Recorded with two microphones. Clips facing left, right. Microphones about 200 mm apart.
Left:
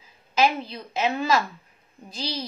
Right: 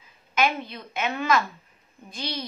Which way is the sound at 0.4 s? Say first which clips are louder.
Left 3 dB; 30° left (ahead or behind).